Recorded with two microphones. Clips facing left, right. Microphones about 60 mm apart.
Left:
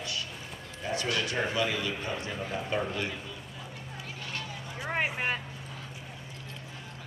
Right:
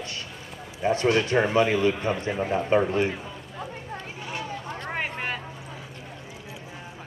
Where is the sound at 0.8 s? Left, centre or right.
Right.